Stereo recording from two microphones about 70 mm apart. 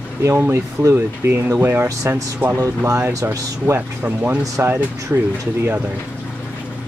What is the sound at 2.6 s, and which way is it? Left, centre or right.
Speech, right.